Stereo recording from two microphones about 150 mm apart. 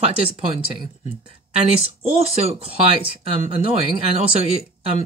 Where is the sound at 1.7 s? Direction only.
40° right (ahead or behind).